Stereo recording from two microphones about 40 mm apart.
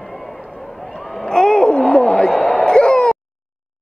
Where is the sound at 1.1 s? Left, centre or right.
Centre.